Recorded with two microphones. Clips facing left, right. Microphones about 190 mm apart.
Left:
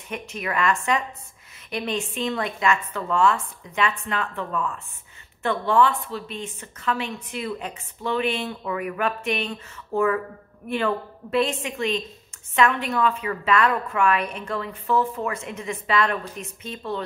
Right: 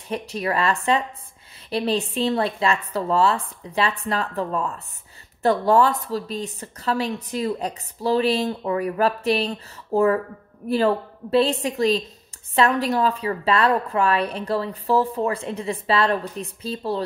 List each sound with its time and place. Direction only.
0.1 s a woman's voice: 35° right (ahead or behind)